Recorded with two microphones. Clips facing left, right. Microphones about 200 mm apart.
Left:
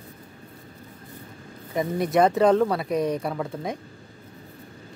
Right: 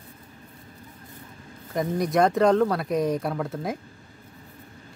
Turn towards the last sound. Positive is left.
turn(degrees=0)  # may be behind; listen again after turning